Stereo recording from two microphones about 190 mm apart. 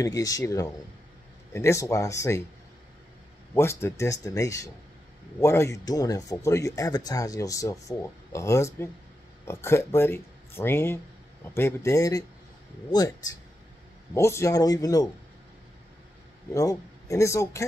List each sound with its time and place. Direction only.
0.0 s speech: 15° left (ahead or behind)
3.5 s speech: 15° left (ahead or behind)
16.5 s speech: 15° left (ahead or behind)